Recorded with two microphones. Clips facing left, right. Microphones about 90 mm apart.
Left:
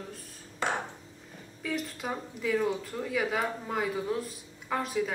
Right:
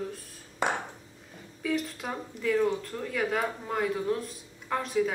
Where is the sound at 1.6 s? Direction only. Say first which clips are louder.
Right 3 dB; centre (ahead or behind).